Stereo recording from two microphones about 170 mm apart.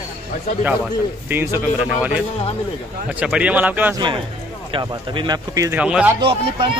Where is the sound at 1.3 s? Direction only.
15° right (ahead or behind).